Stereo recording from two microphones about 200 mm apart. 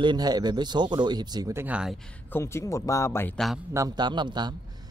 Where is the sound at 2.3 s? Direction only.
15° left (ahead or behind).